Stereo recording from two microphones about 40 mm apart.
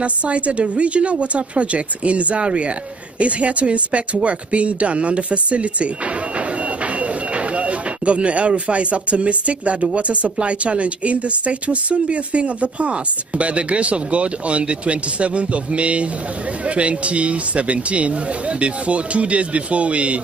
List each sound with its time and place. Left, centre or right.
0.0 s speech: right
7.0 s speech: right